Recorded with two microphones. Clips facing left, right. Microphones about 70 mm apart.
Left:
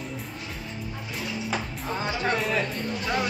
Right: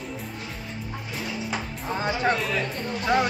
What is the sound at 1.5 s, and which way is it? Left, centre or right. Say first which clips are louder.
Music: even; centre.